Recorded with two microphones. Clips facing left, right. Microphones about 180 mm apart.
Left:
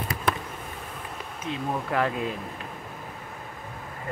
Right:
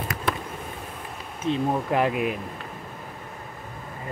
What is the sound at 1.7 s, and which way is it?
Speech, 20° right (ahead or behind).